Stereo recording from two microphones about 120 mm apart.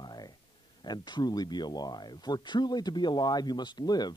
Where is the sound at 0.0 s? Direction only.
35° left (ahead or behind).